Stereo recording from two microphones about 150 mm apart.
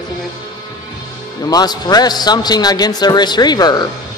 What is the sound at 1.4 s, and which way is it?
A man's voice, 25° left (ahead or behind).